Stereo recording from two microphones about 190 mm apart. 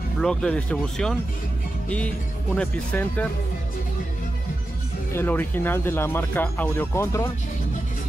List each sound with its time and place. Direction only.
0.2 s speech: 5° left (ahead or behind)
5.1 s speech: 10° left (ahead or behind)